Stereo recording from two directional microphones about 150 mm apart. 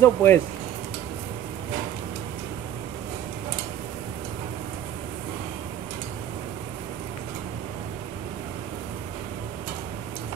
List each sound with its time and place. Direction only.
0.0 s speech: 15° left (ahead or behind)